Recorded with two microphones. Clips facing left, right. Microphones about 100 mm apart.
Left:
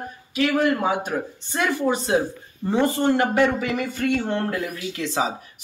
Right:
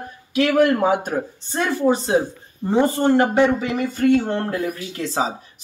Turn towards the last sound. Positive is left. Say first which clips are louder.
# right 1 dB
turn(degrees=-35)  # may be behind; listen again after turning